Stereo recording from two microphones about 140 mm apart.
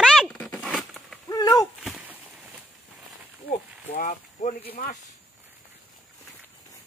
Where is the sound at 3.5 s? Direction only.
55° left (ahead or behind); by 5.0 s 90° left.